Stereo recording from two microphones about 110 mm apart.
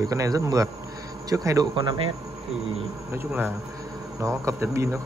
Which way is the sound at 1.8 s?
45° right (ahead or behind).